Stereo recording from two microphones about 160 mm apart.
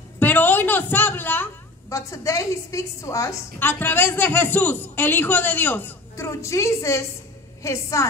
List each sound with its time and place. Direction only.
0.2 s a woman's voice: 10° left (ahead or behind)